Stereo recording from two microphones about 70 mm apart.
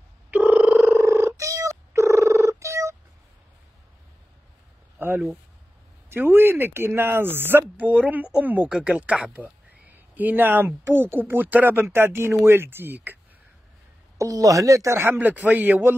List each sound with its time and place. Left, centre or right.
0.3 s a sound: right
1.0 s purr: right
4.9 s a sound: right
6.0 s speech: right
14.1 s speech: right
15.0 s speech: right